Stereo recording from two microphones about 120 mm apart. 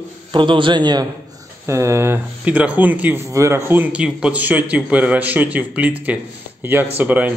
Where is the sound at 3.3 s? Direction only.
25° right (ahead or behind).